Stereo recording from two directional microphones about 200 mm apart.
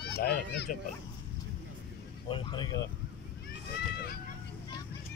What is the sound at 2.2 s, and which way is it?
Speech, 25° left (ahead or behind).